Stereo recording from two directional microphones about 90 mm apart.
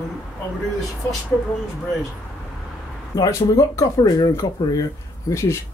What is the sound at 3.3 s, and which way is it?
Speech, 35° left (ahead or behind).